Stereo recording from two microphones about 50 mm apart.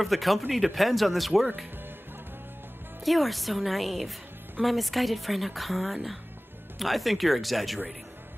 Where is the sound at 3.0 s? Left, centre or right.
Centre.